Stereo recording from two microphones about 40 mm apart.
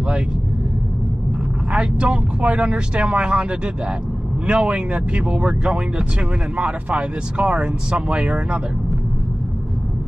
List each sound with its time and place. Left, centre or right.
1.7 s speech: right